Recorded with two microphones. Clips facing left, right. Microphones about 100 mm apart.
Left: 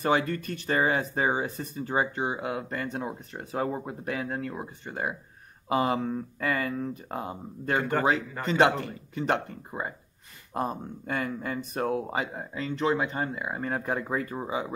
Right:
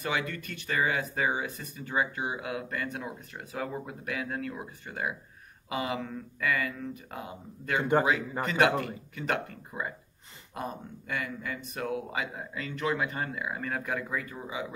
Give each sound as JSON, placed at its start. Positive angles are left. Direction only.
{"t": 0.0, "sound": "speech", "side_deg": 40}